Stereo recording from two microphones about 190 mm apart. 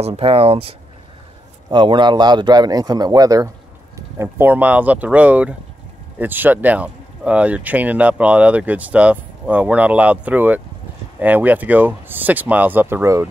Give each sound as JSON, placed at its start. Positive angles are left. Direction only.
{"t": 0.0, "sound": "a man's voice", "side_deg": -30}